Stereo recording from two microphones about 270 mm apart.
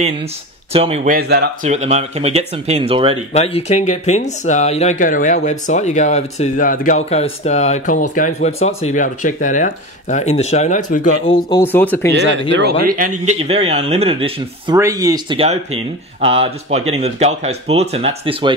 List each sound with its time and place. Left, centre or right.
0.7 s speech: right
1.7 s speech: right
3.3 s speech: left
11.2 s speech: centre
12.1 s speech: right
12.8 s speech: right